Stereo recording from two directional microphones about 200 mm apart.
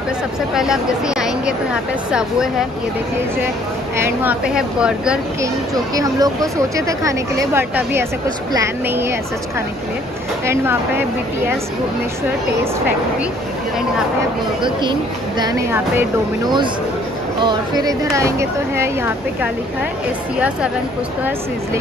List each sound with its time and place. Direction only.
0.6 s a woman's voice: 5° right (ahead or behind)
3.9 s a woman's voice: 10° right (ahead or behind)
5.9 s speech: 20° right (ahead or behind)
10.4 s speech: 10° right (ahead or behind)
14.6 s speech: 25° right (ahead or behind)
15.7 s a woman's voice: 10° right (ahead or behind)